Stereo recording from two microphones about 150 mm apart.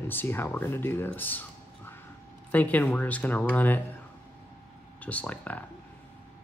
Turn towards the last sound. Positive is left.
turn(degrees=10)  # may be behind; listen again after turning